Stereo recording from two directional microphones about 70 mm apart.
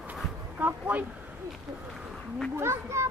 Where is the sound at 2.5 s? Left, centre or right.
Right.